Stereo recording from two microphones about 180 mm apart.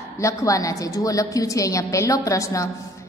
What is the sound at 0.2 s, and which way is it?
A woman's voice, 15° left (ahead or behind).